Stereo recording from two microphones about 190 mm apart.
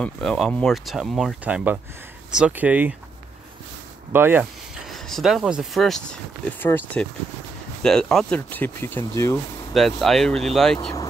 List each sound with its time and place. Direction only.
0.0 s speech: 5° left (ahead or behind)
4.1 s speech: 10° right (ahead or behind); by 9.4 s 15° left (ahead or behind)
9.8 s speech: centre (ahead or behind)
10.8 s speech: 20° left (ahead or behind)